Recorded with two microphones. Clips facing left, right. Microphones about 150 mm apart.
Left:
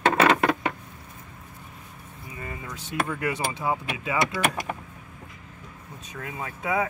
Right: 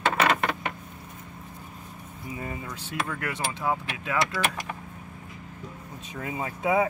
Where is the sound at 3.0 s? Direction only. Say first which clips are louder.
Left 4 dB; 20° left (ahead or behind).